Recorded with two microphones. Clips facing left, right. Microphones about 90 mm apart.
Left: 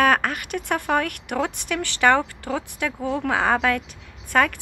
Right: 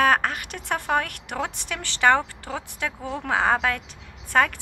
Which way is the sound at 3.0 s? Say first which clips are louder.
Left 6 dB; 40° left (ahead or behind).